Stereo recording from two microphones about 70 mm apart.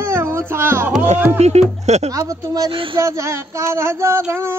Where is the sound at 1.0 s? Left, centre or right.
Right.